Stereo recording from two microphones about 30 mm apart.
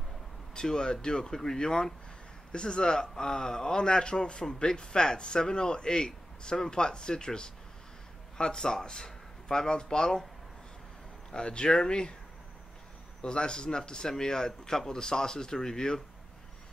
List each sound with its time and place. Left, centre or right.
0.6 s speech: left
11.3 s speech: left
13.2 s speech: left